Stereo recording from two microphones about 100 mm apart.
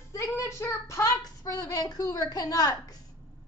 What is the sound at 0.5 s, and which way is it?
Speech, 25° left (ahead or behind).